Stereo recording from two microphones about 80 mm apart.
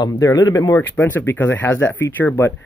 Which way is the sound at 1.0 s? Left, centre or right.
Left.